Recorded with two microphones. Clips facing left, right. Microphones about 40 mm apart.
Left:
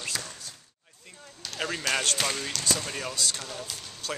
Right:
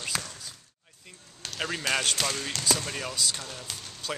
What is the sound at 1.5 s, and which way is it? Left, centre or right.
Speech, centre.